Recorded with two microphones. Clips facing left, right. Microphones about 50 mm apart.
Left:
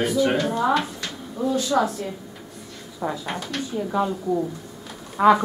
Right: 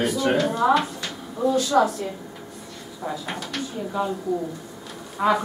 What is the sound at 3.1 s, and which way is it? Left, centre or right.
A woman's voice, centre.